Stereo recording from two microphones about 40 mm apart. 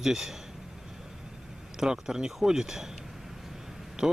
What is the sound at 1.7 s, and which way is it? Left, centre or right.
Speech, centre.